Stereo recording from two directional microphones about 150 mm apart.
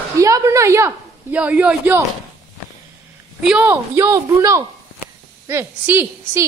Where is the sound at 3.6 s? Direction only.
15° right (ahead or behind).